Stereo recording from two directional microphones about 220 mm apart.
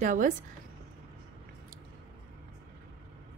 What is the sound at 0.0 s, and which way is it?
Speech, 35° right (ahead or behind).